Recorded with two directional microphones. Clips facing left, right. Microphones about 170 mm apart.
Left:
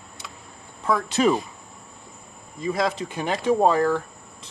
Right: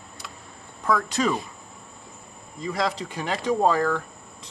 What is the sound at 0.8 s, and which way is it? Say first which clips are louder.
Speech: left 3 dB; 25° left (ahead or behind).